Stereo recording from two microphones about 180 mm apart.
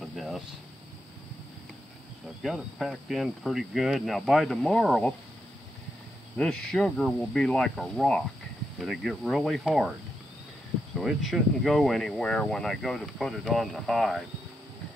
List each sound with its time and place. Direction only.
0.0 s a sound: centre (ahead or behind)
2.4 s speech: centre (ahead or behind)
6.3 s speech: 5° left (ahead or behind)
11.0 s speech: centre (ahead or behind)